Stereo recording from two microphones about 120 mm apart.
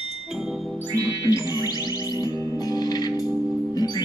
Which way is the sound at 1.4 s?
35° left (ahead or behind).